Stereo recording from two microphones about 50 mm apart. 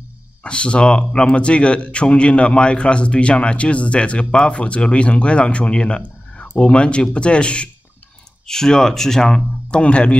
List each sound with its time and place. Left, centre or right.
0.4 s speech: left
9.7 s speech: left